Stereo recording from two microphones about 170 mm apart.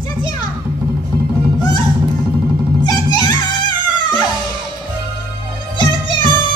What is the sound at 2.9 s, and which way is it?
Music, 25° left (ahead or behind).